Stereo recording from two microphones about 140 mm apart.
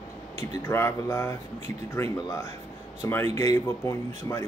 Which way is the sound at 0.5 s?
20° left (ahead or behind).